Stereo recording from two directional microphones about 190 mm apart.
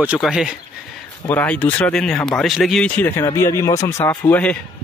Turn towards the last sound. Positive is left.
turn(degrees=10)  # may be behind; listen again after turning